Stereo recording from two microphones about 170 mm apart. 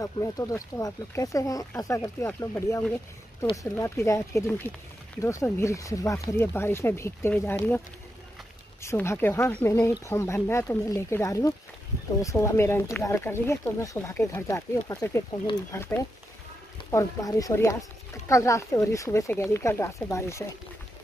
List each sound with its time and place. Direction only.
0.0 s speech: 20° left (ahead or behind)
8.8 s speech: 15° left (ahead or behind)